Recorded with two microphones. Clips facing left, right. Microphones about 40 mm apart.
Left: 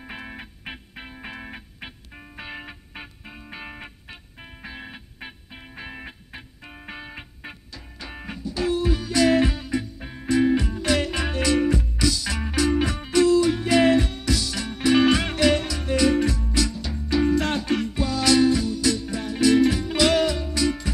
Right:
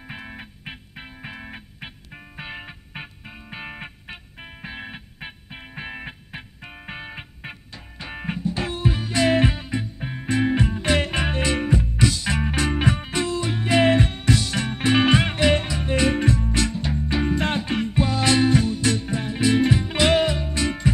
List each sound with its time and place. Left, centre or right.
0.0 s music: centre; by 20.9 s right